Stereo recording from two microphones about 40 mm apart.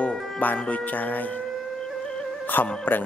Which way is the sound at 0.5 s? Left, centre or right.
Left.